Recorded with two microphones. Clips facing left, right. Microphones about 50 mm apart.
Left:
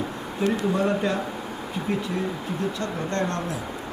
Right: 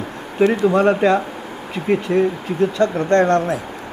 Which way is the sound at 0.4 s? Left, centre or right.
Right.